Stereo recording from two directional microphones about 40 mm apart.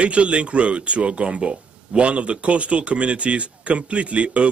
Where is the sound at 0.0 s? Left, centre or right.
Right.